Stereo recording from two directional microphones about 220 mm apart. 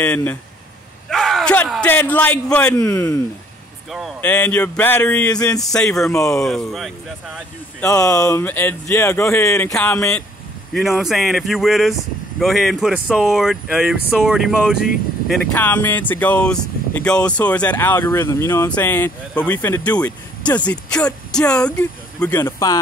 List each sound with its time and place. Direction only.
0.0 s a man's voice: 5° left (ahead or behind)
5.9 s speech: centre (ahead or behind)
7.8 s speech: 15° left (ahead or behind)
10.7 s speech: centre (ahead or behind)
15.5 s speech: 10° left (ahead or behind)